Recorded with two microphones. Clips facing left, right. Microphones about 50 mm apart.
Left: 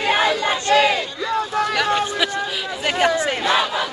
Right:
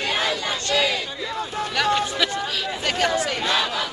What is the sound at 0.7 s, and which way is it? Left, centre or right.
Crowd, left.